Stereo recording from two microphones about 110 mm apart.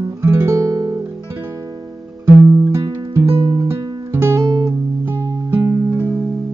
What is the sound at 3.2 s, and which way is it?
Music, 50° right (ahead or behind).